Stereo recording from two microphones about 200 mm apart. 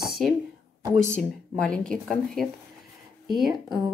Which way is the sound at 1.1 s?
5° left (ahead or behind).